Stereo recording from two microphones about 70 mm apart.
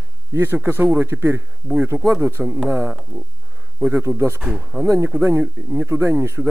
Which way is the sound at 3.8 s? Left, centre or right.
Right.